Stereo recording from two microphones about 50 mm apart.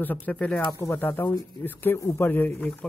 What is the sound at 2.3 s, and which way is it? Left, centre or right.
Speech, left.